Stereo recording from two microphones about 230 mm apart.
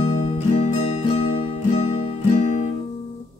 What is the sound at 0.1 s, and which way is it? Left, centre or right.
Music, left.